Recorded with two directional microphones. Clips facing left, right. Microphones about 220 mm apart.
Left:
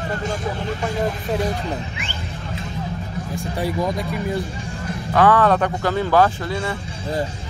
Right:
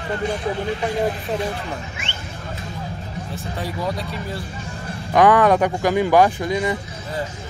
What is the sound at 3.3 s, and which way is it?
Speech, 15° left (ahead or behind).